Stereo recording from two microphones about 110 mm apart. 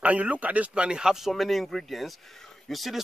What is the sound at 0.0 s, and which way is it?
A man's voice, 10° right (ahead or behind).